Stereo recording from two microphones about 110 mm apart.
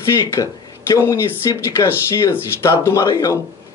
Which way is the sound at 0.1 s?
30° left (ahead or behind).